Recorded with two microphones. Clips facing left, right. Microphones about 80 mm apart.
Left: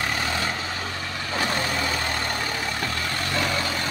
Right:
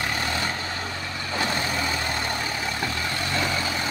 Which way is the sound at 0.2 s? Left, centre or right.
Centre.